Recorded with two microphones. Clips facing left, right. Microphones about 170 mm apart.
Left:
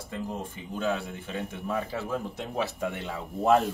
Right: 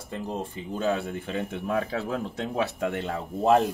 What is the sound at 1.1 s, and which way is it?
Speech, 60° right (ahead or behind).